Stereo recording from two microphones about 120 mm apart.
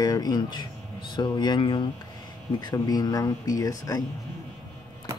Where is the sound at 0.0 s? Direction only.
35° left (ahead or behind).